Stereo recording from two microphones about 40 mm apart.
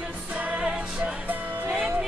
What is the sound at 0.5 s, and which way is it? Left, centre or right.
Music, centre.